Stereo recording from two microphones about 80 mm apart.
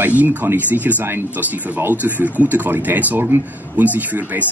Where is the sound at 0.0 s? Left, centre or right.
Right.